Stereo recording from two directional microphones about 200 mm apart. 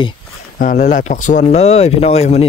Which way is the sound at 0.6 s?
40° left (ahead or behind).